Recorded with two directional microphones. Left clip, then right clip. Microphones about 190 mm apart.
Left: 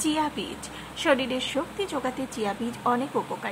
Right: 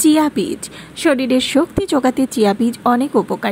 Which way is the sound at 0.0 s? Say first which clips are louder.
Right 13 dB; 30° right (ahead or behind).